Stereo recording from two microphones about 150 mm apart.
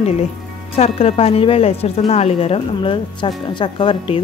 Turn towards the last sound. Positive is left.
turn(degrees=35)  # may be behind; listen again after turning